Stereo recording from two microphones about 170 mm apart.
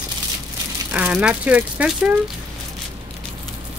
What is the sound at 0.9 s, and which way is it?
Speech, 5° right (ahead or behind).